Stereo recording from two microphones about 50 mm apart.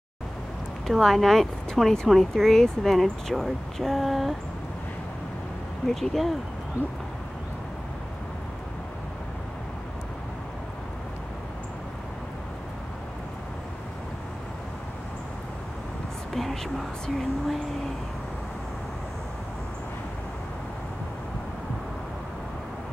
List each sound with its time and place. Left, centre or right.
0.8 s speech: centre
5.9 s speech: centre
16.3 s speech: centre